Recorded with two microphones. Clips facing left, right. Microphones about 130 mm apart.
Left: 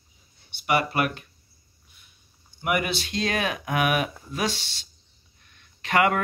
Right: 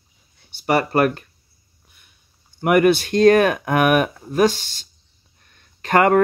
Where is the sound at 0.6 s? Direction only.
40° right (ahead or behind).